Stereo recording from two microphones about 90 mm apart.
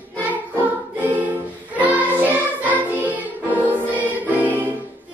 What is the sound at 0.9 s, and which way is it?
Music, 20° right (ahead or behind).